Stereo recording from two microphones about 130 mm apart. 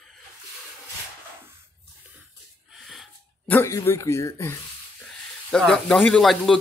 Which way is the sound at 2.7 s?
Centre (ahead or behind).